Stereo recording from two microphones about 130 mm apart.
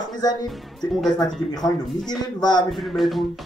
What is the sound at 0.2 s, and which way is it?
Speech, 30° left (ahead or behind).